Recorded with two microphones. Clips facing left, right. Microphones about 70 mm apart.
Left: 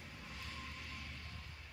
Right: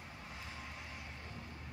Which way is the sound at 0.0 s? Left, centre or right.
Right.